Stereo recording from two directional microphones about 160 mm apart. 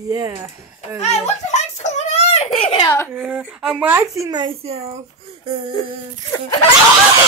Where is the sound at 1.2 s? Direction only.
50° left (ahead or behind).